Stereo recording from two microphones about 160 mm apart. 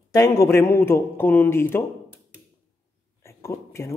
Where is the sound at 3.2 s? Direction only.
15° left (ahead or behind).